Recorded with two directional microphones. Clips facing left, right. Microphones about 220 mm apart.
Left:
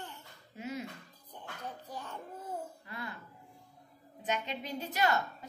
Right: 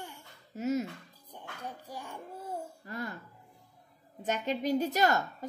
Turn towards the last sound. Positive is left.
turn(degrees=-45)  # may be behind; listen again after turning